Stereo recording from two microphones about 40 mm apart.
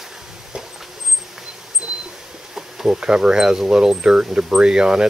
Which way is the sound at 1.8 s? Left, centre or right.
Right.